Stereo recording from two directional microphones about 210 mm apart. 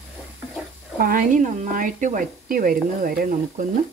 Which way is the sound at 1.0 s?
40° right (ahead or behind).